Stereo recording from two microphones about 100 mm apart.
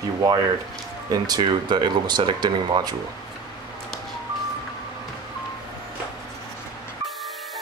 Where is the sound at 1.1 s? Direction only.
45° right (ahead or behind).